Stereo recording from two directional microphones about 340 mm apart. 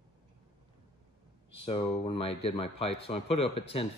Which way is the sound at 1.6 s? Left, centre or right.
Centre.